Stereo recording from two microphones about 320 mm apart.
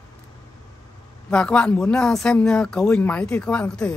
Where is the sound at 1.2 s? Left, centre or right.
Centre.